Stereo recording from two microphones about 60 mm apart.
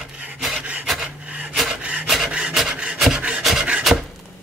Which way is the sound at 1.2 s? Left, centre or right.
Right.